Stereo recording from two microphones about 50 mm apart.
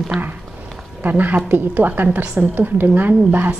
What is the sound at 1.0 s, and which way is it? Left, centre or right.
A woman's voice, right.